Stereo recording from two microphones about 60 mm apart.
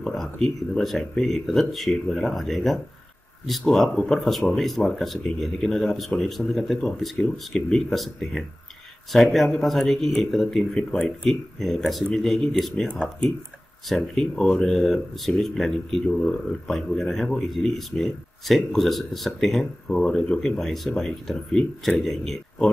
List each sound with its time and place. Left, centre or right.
0.0 s speech: centre
10.8 s speech: centre
12.8 s speech: centre
13.8 s speech: centre